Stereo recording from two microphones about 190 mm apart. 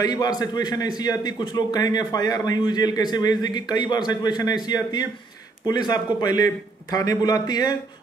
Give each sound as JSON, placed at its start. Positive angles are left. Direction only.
{"t": 0.0, "sound": "a man's voice", "side_deg": 20}